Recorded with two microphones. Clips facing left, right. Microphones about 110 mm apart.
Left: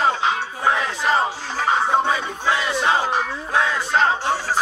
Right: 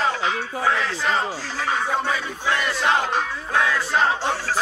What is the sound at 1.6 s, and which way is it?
Battle cry, 30° left (ahead or behind).